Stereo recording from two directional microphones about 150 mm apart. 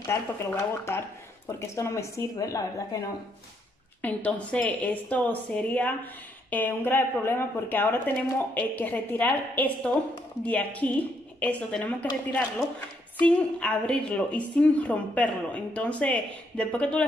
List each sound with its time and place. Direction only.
0.0 s a woman's voice: 15° left (ahead or behind)
4.0 s a woman's voice: 10° left (ahead or behind)